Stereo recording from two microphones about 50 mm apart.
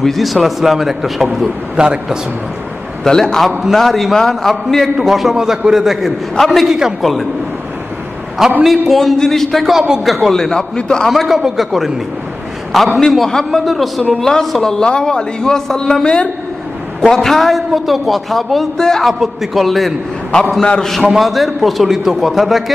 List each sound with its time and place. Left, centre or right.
0.0 s a man's voice: centre
1.8 s a man's voice: centre
3.0 s a man's voice: centre
8.6 s a man's voice: centre
9.8 s a man's voice: centre
10.0 s a man's voice: centre
11.1 s a man's voice: centre
18.8 s a man's voice: centre
19.1 s a man's voice: centre